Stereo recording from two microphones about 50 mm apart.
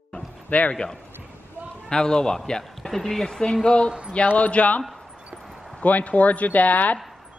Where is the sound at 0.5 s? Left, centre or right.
Left.